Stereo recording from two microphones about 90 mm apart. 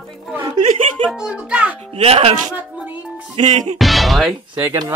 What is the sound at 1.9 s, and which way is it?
Speech, 90° right.